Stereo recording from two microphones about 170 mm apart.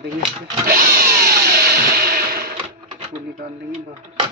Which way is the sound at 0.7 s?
60° right (ahead or behind).